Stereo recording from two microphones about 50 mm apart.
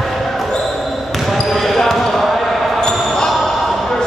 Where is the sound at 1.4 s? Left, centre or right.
Centre.